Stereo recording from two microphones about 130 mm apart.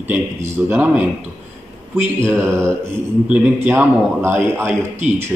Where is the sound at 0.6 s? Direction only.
10° right (ahead or behind).